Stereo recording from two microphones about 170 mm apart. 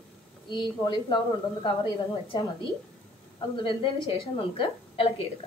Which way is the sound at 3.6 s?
30° left (ahead or behind).